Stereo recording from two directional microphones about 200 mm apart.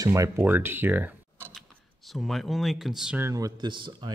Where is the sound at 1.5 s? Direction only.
Centre (ahead or behind); by 4.1 s 25° right (ahead or behind).